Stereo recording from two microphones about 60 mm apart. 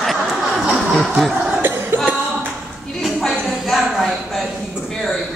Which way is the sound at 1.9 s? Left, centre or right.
Right.